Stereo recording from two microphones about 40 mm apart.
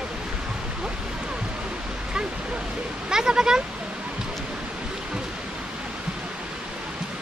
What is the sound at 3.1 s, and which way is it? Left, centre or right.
Speech, centre.